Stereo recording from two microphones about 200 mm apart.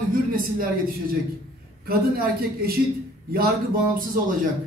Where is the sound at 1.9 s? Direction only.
50° right (ahead or behind).